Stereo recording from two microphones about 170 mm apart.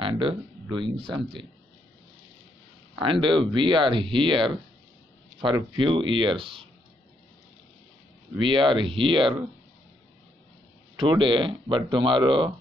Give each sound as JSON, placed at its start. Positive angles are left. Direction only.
{"t": 0.0, "sound": "speech", "side_deg": -30}
{"t": 3.0, "sound": "speech", "side_deg": -30}
{"t": 8.4, "sound": "speech", "side_deg": -30}
{"t": 11.0, "sound": "speech", "side_deg": -30}